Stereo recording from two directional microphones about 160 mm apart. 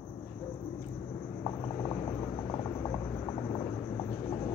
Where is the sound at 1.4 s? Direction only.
25° left (ahead or behind).